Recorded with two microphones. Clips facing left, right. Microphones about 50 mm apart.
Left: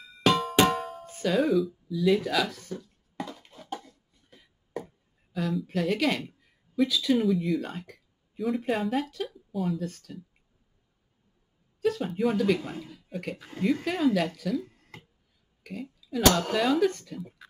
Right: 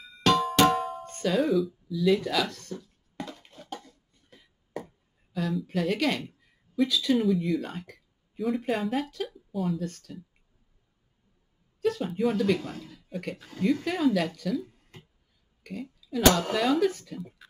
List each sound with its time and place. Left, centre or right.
0.2 s music: centre
11.8 s speech: centre
12.5 s speech: centre
12.9 s speech: centre
15.6 s speech: centre